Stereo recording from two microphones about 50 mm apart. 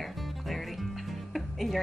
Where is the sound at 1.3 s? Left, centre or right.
Centre.